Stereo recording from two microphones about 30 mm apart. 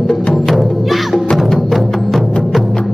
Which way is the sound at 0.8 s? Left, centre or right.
Centre.